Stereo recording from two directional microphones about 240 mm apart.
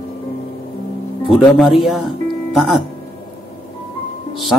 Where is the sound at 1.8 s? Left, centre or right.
Centre.